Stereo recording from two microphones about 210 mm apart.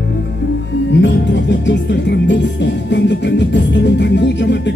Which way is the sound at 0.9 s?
60° left (ahead or behind).